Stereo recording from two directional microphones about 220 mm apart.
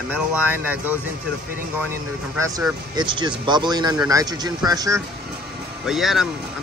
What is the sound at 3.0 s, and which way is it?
Speech, 20° right (ahead or behind).